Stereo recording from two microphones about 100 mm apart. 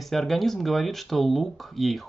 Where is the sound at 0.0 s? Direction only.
Centre (ahead or behind).